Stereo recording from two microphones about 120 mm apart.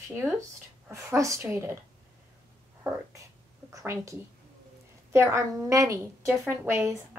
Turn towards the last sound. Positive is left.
turn(degrees=-20)  # may be behind; listen again after turning